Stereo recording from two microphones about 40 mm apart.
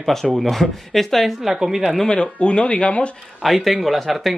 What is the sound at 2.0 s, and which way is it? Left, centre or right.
Speech, left.